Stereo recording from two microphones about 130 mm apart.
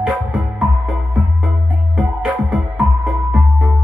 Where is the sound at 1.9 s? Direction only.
5° right (ahead or behind).